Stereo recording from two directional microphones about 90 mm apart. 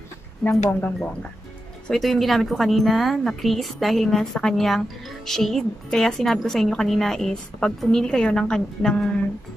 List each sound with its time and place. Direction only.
0.5 s speech: 20° left (ahead or behind)
1.9 s speech: centre (ahead or behind)